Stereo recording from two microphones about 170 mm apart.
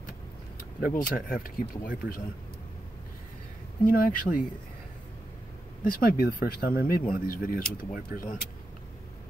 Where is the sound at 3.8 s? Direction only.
55° left (ahead or behind).